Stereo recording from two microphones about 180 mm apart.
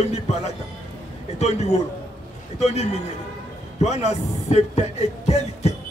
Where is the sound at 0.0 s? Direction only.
35° left (ahead or behind).